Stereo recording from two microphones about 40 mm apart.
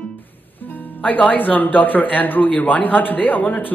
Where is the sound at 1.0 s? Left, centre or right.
Left.